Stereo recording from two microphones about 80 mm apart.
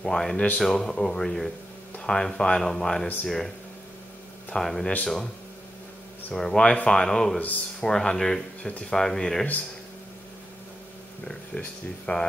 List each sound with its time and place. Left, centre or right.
0.0 s speech: centre
4.5 s speech: centre
6.3 s speech: centre
11.6 s speech: centre